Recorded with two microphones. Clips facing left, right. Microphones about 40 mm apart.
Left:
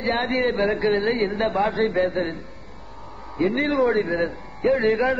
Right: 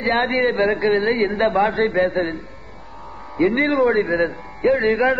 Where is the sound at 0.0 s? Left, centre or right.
Right.